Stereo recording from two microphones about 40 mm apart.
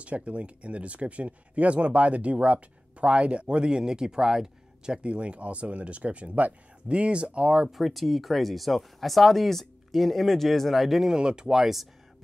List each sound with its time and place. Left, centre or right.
0.0 s speech: right
7.7 s speech: centre
11.1 s speech: centre